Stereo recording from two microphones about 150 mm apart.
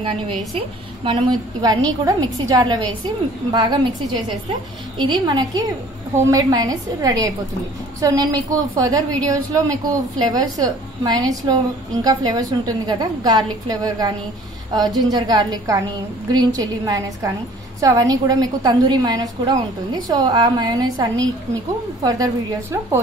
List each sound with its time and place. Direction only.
0.6 s a woman's voice: 35° right (ahead or behind); by 23.0 s 20° right (ahead or behind)